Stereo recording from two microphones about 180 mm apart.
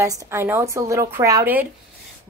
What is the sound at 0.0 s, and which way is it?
Speech, 20° right (ahead or behind).